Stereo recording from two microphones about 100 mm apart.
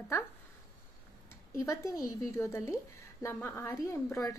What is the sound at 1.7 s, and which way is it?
A woman's voice, 35° left (ahead or behind).